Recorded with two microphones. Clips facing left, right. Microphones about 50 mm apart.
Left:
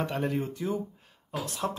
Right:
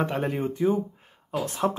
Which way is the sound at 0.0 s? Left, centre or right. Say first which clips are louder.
Right 3 dB; right.